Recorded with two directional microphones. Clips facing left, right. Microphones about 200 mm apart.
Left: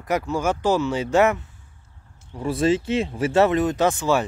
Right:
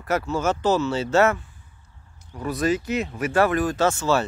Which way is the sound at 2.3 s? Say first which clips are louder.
Left 3 dB; 25° left (ahead or behind).